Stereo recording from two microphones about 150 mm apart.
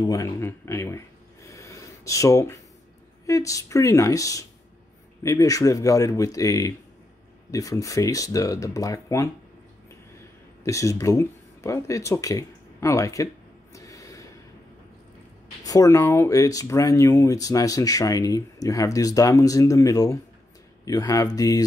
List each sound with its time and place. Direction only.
0.0 s speech: 20° left (ahead or behind)
1.5 s a sound: 20° left (ahead or behind)
3.3 s speech: 20° left (ahead or behind)
10.6 s speech: 20° left (ahead or behind)
13.7 s a sound: 20° left (ahead or behind)
15.6 s speech: 25° left (ahead or behind)